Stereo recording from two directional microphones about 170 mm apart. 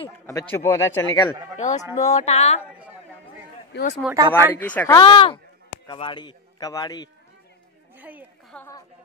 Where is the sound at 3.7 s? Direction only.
80° left.